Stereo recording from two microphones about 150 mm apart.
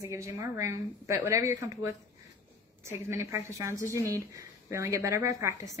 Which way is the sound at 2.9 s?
15° right (ahead or behind).